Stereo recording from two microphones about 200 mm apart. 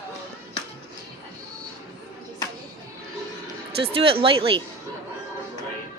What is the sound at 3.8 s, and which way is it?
Speech, 25° right (ahead or behind).